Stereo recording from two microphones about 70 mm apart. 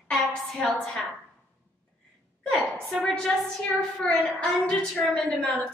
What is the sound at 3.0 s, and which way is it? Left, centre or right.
A woman's voice, centre.